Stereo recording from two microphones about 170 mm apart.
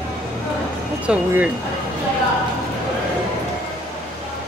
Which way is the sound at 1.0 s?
10° right (ahead or behind).